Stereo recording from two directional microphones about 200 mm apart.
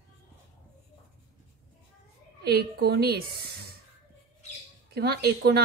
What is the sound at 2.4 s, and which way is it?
Speech, 50° right (ahead or behind).